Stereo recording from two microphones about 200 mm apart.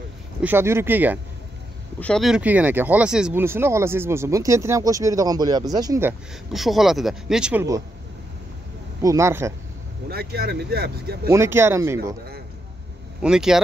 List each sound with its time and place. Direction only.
0.4 s speech: 10° right (ahead or behind)
2.0 s speech: 5° left (ahead or behind); by 6.1 s 15° right (ahead or behind)
6.5 s speech: centre (ahead or behind)
9.0 s speech: 15° right (ahead or behind)
10.0 s speech: 50° right (ahead or behind)
11.2 s speech: 15° right (ahead or behind)
13.2 s speech: 5° right (ahead or behind)